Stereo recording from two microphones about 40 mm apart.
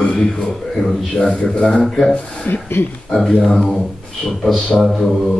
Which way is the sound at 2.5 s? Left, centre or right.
Left.